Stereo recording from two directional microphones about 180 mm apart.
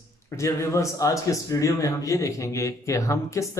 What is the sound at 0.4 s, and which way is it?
Speech, 15° left (ahead or behind).